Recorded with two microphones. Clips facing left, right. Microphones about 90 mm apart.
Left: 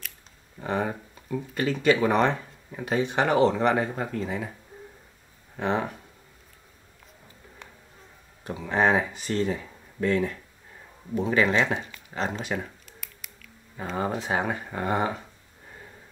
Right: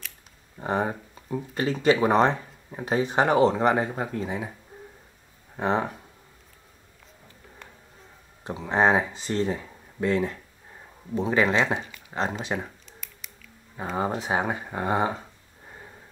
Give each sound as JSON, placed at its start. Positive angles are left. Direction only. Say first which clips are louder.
{"t": 0.6, "sound": "speech", "louder": "right 2 dB", "side_deg": -25}
{"t": 3.4, "sound": "speech", "louder": "right 1 dB", "side_deg": -5}
{"t": 5.6, "sound": "speech", "louder": "right 2 dB", "side_deg": -30}
{"t": 8.5, "sound": "speech", "louder": "right 1 dB", "side_deg": -25}
{"t": 13.0, "sound": "scissors", "louder": "left 1 dB", "side_deg": 0}
{"t": 13.8, "sound": "speech", "louder": "right 1 dB", "side_deg": -25}